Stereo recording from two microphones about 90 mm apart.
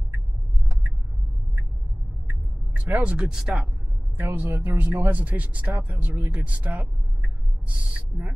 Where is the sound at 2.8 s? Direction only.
20° right (ahead or behind).